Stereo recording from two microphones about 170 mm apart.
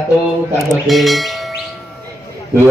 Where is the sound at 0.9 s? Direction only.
Centre (ahead or behind).